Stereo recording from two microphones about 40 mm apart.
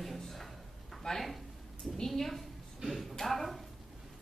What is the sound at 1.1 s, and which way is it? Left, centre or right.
Speech, centre.